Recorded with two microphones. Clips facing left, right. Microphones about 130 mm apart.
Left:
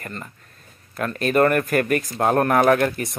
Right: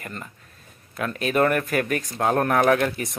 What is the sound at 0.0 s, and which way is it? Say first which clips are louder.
Speech: left 2 dB; 5° right (ahead or behind).